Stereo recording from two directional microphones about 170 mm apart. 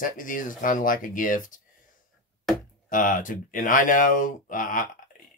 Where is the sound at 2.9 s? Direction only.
50° left (ahead or behind).